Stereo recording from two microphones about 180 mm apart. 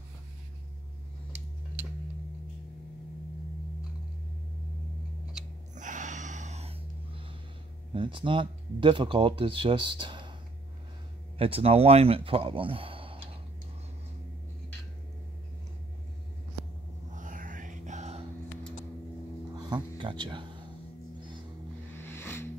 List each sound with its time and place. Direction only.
5.8 s gasp: 45° right (ahead or behind)
7.9 s speech: 25° right (ahead or behind)
11.3 s speech: 30° right (ahead or behind)
17.1 s music: 45° right (ahead or behind)
19.5 s a sound: 25° right (ahead or behind)
21.9 s music: 15° left (ahead or behind)